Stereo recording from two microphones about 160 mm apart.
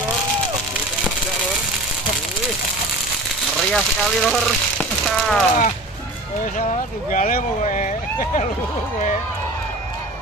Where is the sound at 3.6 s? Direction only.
5° left (ahead or behind).